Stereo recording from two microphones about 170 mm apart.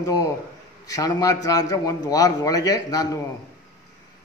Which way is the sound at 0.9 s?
20° left (ahead or behind).